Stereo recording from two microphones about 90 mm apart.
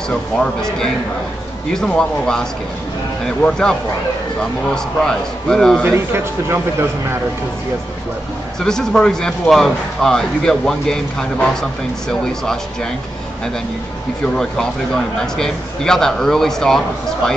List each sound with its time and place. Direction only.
0.1 s speech: 5° left (ahead or behind)
5.9 s speech: 30° right (ahead or behind)
8.5 s speech: 5° left (ahead or behind)
14.3 s speech: 5° left (ahead or behind)